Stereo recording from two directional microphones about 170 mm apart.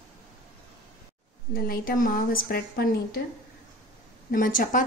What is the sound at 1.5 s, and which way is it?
A woman's voice, 60° left (ahead or behind).